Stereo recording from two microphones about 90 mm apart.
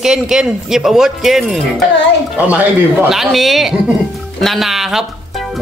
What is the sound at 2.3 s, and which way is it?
Speech, 15° right (ahead or behind).